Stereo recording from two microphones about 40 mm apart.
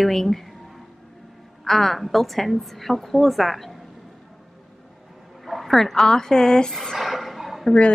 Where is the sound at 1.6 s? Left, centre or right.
Centre.